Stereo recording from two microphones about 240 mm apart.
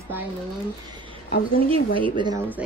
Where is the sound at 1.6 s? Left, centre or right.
Centre.